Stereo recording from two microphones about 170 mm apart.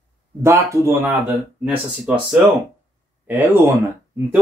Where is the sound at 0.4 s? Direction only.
15° right (ahead or behind).